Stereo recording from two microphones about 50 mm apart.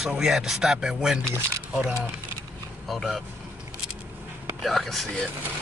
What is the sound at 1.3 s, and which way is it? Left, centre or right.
Speech, right.